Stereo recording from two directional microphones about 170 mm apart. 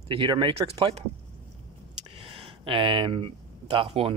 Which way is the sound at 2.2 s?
35° right (ahead or behind).